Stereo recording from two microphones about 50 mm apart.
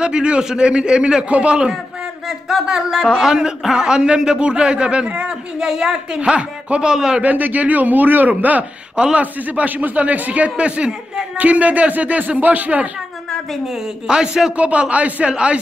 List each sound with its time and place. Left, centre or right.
0.0 s a man's voice: centre
2.2 s a man's voice: centre
7.2 s speech: right
8.9 s a man's voice: centre
9.2 s speech: right
10.5 s speech: centre
14.0 s speech: centre
14.6 s a man's voice: right